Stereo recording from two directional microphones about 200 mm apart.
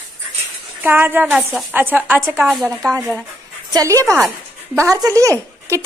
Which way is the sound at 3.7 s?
15° right (ahead or behind).